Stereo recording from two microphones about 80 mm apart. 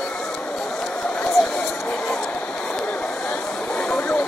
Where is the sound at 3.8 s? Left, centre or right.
Centre.